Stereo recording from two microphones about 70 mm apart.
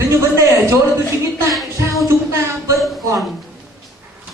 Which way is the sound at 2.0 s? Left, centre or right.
Right.